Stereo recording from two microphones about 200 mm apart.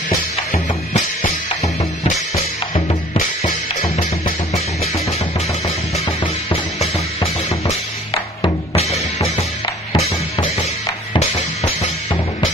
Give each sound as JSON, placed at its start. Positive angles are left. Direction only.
{"t": 0.9, "sound": "music", "side_deg": 35}
{"t": 2.3, "sound": "drum kit", "side_deg": 20}
{"t": 3.2, "sound": "drum kit", "side_deg": 35}
{"t": 7.6, "sound": "music", "side_deg": 30}